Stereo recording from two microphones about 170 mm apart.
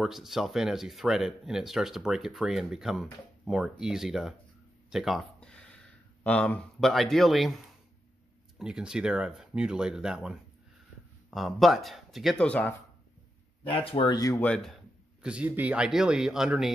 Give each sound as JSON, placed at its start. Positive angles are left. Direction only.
{"t": 0.0, "sound": "speech", "side_deg": 0}
{"t": 4.9, "sound": "a sound", "side_deg": 0}
{"t": 6.2, "sound": "speech", "side_deg": 10}
{"t": 13.7, "sound": "speech", "side_deg": 35}
{"t": 14.4, "sound": "speech", "side_deg": 5}
{"t": 15.2, "sound": "speech", "side_deg": -10}